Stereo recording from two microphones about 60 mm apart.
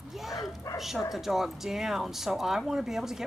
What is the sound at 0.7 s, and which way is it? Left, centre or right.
Bow-wow, left.